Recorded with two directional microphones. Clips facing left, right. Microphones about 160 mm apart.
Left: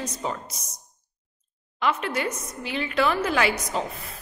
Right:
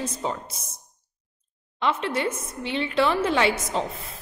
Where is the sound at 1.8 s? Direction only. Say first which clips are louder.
Right 1 dB; 25° right (ahead or behind).